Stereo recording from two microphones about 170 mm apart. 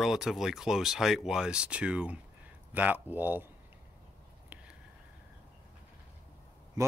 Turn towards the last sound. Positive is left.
turn(degrees=-20)  # may be behind; listen again after turning